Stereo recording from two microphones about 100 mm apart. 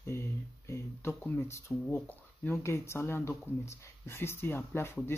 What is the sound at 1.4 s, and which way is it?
Speech, 30° left (ahead or behind).